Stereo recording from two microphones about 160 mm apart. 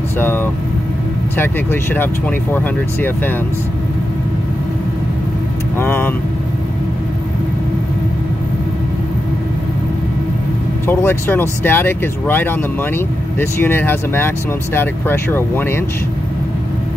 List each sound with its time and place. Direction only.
0.2 s speech: 15° left (ahead or behind)
5.8 s speech: 15° left (ahead or behind)
10.9 s speech: 10° left (ahead or behind)